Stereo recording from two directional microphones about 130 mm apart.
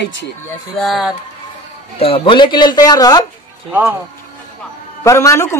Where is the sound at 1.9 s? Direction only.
45° left (ahead or behind); by 3.2 s 30° left (ahead or behind).